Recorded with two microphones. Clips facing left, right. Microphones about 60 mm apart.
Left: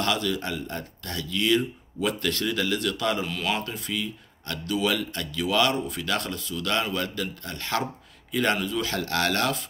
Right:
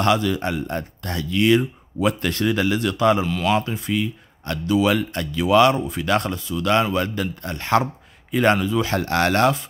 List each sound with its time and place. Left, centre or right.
0.0 s speech: right
3.2 s speech: centre
3.5 s speech: right